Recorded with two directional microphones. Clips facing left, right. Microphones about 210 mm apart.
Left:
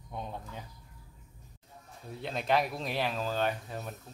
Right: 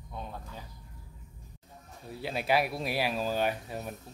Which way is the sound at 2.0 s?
5° right (ahead or behind).